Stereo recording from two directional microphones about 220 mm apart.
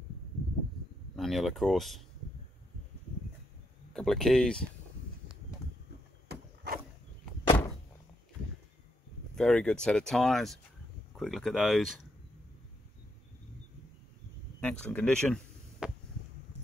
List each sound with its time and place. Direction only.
1.1 s speech: centre (ahead or behind)
3.9 s speech: centre (ahead or behind)
6.2 s a sound: 45° right (ahead or behind)
9.3 s speech: 5° left (ahead or behind)
14.6 s speech: 5° left (ahead or behind)